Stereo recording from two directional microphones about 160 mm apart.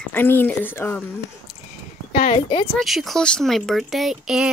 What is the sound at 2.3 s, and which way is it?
Speech, 35° left (ahead or behind).